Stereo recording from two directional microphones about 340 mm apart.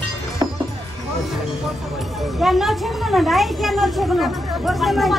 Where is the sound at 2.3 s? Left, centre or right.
Centre.